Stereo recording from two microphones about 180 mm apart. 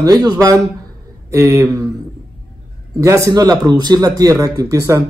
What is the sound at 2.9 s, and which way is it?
A man's voice, 20° right (ahead or behind).